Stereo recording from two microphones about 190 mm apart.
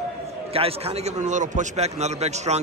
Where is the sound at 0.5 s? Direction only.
30° right (ahead or behind).